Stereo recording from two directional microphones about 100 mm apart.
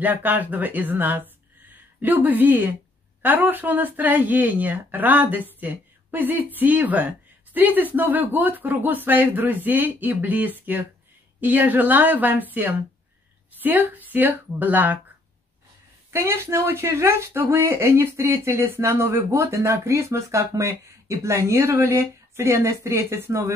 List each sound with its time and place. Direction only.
0.0 s speech: 20° right (ahead or behind)
16.1 s speech: 25° right (ahead or behind)